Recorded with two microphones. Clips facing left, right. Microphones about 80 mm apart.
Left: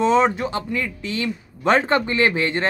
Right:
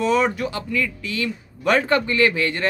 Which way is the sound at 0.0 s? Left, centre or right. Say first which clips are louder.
Left 2 dB; left.